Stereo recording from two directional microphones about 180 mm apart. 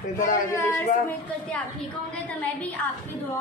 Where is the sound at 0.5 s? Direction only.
15° left (ahead or behind).